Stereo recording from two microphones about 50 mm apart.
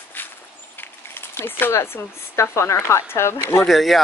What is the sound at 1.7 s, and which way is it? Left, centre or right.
A woman's voice, left.